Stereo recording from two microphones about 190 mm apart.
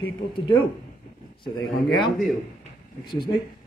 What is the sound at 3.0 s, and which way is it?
Speech, 25° left (ahead or behind).